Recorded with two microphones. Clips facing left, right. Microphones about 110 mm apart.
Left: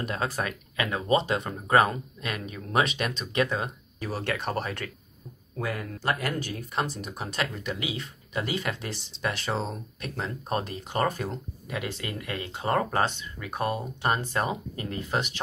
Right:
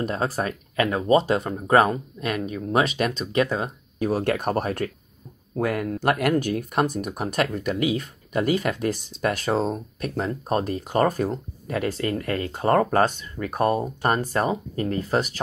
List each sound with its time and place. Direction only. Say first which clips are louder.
0.0 s speech: right 5 dB; 40° right (ahead or behind)
4.1 s speech: right 6 dB; 50° right (ahead or behind)
5.6 s speech: right 8 dB; 60° right (ahead or behind); by 15.4 s 40° right (ahead or behind)